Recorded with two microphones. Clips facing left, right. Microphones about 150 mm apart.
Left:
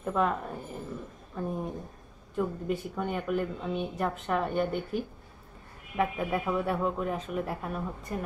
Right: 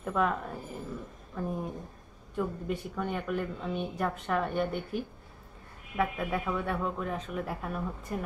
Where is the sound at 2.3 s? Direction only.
5° left (ahead or behind).